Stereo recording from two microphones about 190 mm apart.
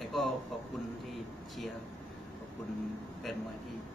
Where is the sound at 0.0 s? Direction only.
Centre (ahead or behind).